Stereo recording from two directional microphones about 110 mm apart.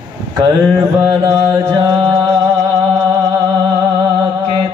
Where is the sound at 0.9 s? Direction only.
30° right (ahead or behind).